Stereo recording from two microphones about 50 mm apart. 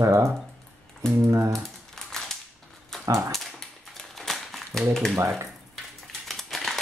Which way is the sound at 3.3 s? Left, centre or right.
Centre.